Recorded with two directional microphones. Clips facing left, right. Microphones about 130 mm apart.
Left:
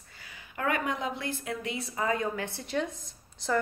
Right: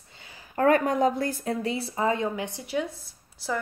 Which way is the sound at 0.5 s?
40° right (ahead or behind).